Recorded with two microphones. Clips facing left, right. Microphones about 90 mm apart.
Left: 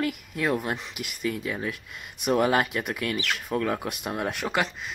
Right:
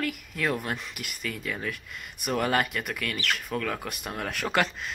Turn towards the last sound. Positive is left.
turn(degrees=10)  # may be behind; listen again after turning